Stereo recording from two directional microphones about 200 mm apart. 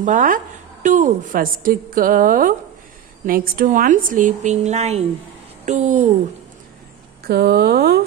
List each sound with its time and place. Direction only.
0.0 s a woman's voice: 40° right (ahead or behind)
7.2 s a woman's voice: 55° right (ahead or behind)